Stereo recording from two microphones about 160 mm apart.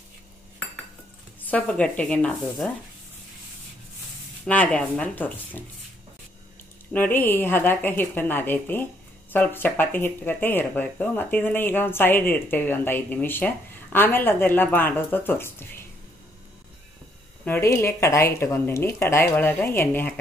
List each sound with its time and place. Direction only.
1.5 s speech: 10° left (ahead or behind)
4.5 s speech: 10° left (ahead or behind)
6.9 s speech: 10° left (ahead or behind)
17.5 s speech: 15° left (ahead or behind)